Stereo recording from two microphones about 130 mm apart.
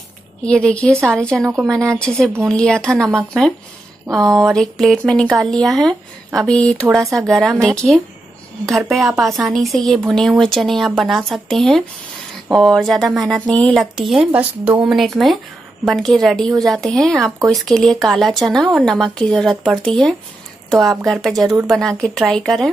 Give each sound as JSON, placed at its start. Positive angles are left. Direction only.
{"t": 0.4, "sound": "a woman's voice", "side_deg": 10}
{"t": 4.1, "sound": "speech", "side_deg": -25}
{"t": 4.6, "sound": "speech", "side_deg": 0}